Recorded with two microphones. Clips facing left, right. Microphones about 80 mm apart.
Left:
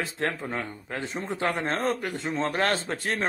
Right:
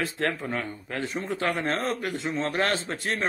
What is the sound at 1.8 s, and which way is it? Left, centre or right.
Speech, left.